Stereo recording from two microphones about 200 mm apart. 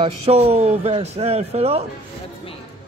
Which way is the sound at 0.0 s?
30° right (ahead or behind).